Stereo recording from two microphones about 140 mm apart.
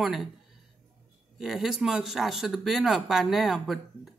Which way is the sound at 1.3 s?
Centre (ahead or behind).